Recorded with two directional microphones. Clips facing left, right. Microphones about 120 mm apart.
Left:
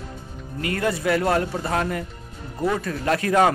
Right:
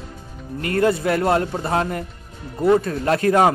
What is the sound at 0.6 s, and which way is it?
A man's voice, 35° right (ahead or behind).